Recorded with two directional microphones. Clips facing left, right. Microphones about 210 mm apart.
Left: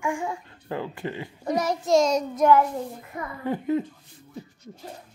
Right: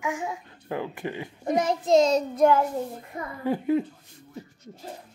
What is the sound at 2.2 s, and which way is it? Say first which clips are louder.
Child singing: left 1 dB; 30° right (ahead or behind).